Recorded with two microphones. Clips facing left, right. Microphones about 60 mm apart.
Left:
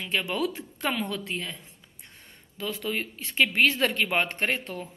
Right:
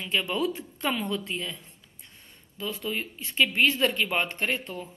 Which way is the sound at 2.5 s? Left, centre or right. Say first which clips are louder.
Left 1 dB; left.